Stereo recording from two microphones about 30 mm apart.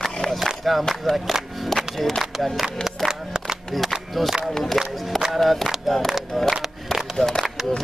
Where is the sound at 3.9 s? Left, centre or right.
Centre.